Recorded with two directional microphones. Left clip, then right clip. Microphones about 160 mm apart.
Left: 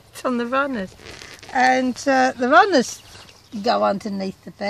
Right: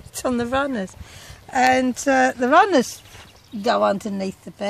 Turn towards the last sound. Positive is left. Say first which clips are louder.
# right 1 dB
turn(degrees=-5)  # may be behind; listen again after turning